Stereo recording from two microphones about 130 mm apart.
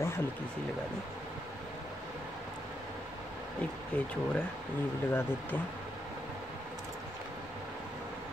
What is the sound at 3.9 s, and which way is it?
Speech, 10° left (ahead or behind).